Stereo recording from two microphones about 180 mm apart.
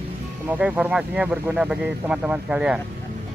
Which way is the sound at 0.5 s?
5° right (ahead or behind).